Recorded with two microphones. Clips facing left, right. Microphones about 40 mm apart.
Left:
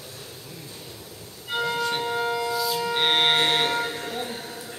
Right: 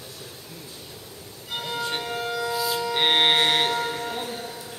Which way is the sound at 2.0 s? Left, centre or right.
Left.